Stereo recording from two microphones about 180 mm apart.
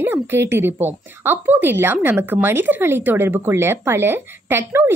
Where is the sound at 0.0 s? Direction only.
10° right (ahead or behind).